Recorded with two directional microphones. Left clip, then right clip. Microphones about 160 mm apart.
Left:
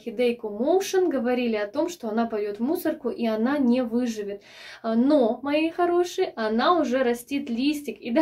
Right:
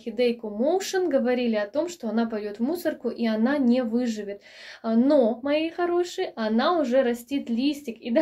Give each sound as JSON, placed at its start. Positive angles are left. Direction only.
{"t": 0.2, "sound": "speech", "side_deg": -45}